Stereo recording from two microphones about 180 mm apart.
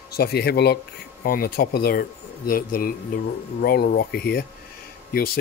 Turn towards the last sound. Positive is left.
turn(degrees=60)  # may be behind; listen again after turning